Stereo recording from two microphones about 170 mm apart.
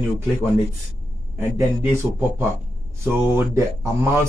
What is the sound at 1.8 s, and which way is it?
Speech, 15° right (ahead or behind).